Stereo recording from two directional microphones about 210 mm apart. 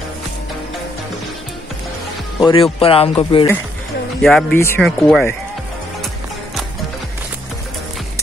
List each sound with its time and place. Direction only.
2.4 s speech: 25° left (ahead or behind)
4.2 s speech: centre (ahead or behind)
4.6 s speech: 10° left (ahead or behind)
4.8 s speech: centre (ahead or behind)